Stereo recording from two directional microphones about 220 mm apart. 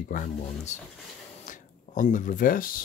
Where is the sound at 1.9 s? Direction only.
35° left (ahead or behind).